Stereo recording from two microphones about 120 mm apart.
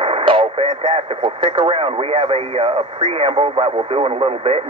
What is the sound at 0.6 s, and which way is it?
Speech, 65° right (ahead or behind).